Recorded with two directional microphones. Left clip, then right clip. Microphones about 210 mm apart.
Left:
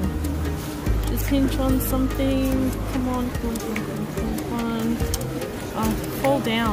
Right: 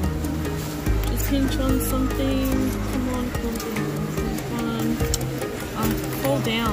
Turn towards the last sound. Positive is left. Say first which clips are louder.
# left 1 dB
turn(degrees=0)  # may be behind; listen again after turning